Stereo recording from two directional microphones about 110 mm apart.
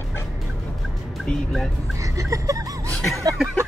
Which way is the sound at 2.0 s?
30° right (ahead or behind).